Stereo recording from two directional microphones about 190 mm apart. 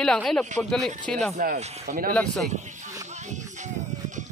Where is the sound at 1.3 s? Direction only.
40° right (ahead or behind).